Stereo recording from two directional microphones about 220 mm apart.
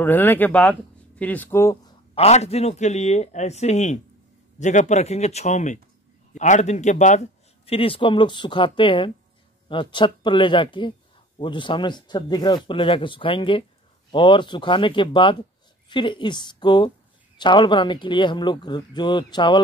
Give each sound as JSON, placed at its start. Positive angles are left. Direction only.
{"t": 0.0, "sound": "speech", "side_deg": 10}
{"t": 2.1, "sound": "a man's voice", "side_deg": 30}